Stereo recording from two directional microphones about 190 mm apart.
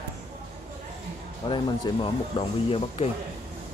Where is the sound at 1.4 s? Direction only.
25° left (ahead or behind).